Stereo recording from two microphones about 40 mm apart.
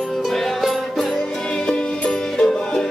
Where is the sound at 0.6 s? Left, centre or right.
Centre.